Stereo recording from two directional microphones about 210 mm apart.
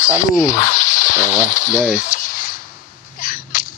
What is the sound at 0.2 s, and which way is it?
Speech, 40° left (ahead or behind).